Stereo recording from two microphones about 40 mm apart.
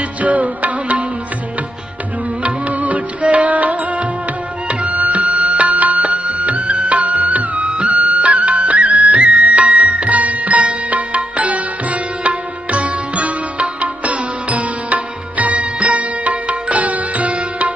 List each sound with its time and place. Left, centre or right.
0.2 s music: right
2.4 s music: right